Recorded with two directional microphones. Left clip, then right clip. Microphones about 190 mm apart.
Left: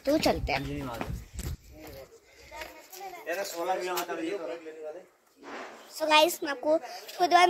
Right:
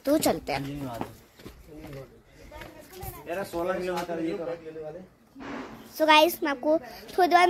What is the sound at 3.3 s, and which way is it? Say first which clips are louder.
Speech: right 1 dB; 60° left (ahead or behind).